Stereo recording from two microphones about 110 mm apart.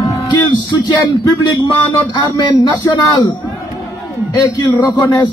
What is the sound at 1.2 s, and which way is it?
A man's voice, 35° left (ahead or behind).